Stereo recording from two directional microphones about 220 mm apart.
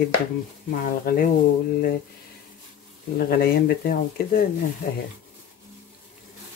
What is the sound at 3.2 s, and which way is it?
Speech, 45° left (ahead or behind).